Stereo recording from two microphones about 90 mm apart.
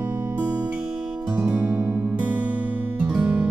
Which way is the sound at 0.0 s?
30° right (ahead or behind).